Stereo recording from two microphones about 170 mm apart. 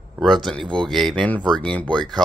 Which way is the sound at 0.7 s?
Centre (ahead or behind).